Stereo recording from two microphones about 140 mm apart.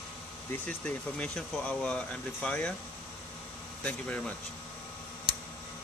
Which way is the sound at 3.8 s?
10° left (ahead or behind).